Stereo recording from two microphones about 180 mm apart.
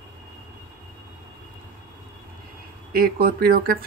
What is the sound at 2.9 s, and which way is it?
Speech, 55° right (ahead or behind).